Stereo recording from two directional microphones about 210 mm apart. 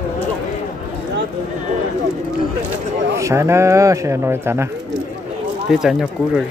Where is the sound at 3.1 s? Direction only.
15° right (ahead or behind).